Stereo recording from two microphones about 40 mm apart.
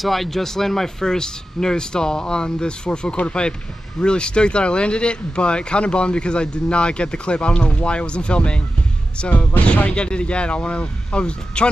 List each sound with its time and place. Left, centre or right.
0.0 s speech: centre; by 8.5 s left
9.3 s speech: left
9.8 s speech: left